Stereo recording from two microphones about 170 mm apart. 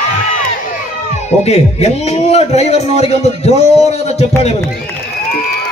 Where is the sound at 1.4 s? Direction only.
40° left (ahead or behind).